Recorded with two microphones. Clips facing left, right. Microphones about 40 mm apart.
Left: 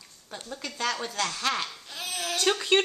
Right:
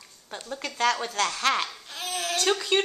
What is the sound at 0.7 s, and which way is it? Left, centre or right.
Speech, right.